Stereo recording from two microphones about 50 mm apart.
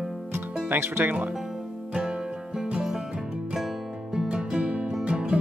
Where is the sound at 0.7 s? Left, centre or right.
Right.